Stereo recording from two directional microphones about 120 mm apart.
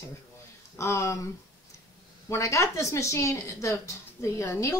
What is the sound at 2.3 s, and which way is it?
A woman's voice, 25° left (ahead or behind).